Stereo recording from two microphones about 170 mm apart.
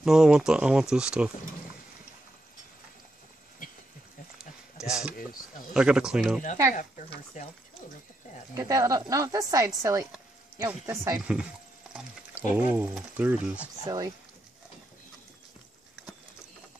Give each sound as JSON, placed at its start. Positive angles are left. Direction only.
{"t": 0.0, "sound": "speech", "side_deg": -5}
{"t": 4.7, "sound": "a sound", "side_deg": -5}
{"t": 5.7, "sound": "speech", "side_deg": -5}
{"t": 6.7, "sound": "speech", "side_deg": 45}
{"t": 8.5, "sound": "speech", "side_deg": -20}
{"t": 13.8, "sound": "speech", "side_deg": -20}